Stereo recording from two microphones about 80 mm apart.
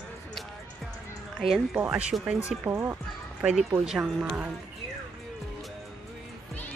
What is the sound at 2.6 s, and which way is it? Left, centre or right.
Speech, right.